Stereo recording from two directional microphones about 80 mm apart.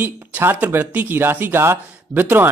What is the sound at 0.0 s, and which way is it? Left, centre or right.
Speech, right.